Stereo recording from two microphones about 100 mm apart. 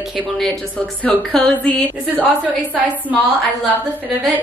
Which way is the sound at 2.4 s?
15° right (ahead or behind).